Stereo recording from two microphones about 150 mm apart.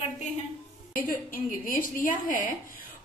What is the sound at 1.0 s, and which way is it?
A woman's voice, 70° left (ahead or behind).